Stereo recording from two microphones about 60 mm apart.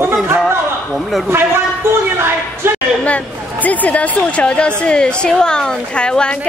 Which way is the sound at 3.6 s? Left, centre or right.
Left.